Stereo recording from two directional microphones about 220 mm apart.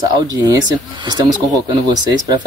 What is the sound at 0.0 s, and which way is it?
Speech, 15° right (ahead or behind).